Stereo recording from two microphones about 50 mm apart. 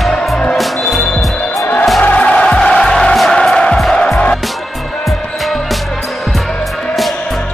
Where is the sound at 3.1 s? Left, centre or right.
Centre.